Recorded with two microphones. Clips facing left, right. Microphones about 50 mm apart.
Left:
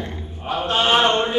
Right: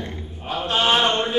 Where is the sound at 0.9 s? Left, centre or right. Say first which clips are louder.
Left 5 dB; centre.